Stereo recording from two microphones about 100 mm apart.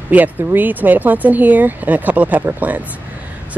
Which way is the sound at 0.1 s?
20° right (ahead or behind).